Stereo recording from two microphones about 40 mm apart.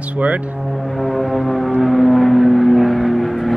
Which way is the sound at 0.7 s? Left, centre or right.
Centre.